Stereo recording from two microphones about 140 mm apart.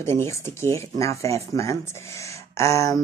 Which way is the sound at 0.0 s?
20° left (ahead or behind).